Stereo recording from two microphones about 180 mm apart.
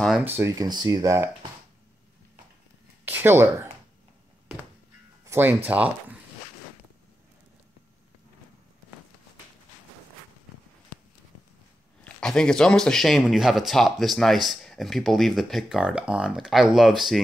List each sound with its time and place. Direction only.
0.2 s speech: 15° right (ahead or behind)
3.1 s speech: 10° right (ahead or behind)
5.2 s speech: 15° right (ahead or behind)
12.0 s a man's voice: 5° left (ahead or behind)